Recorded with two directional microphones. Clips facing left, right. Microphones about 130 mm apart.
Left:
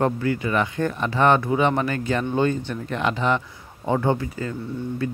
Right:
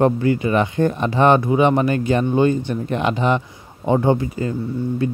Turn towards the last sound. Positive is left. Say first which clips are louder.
# right 5 dB
turn(degrees=-20)  # may be behind; listen again after turning